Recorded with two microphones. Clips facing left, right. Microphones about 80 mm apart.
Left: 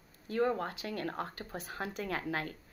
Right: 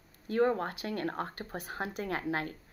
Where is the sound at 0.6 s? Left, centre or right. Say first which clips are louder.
Right 3 dB; right.